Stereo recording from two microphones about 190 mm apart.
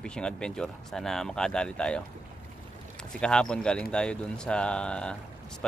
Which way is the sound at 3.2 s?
5° left (ahead or behind).